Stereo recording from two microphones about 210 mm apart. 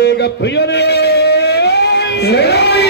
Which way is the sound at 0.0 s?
55° left (ahead or behind).